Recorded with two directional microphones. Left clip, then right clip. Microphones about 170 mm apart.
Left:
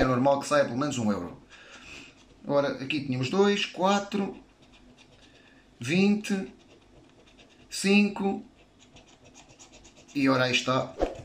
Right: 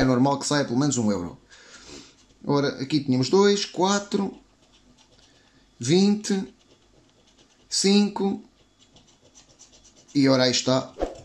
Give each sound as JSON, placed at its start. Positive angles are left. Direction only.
{"t": 0.1, "sound": "speech", "side_deg": -65}
{"t": 5.8, "sound": "speech", "side_deg": -65}
{"t": 7.7, "sound": "speech", "side_deg": -65}
{"t": 10.1, "sound": "speech", "side_deg": -65}
{"t": 11.0, "sound": "throat clearing", "side_deg": 0}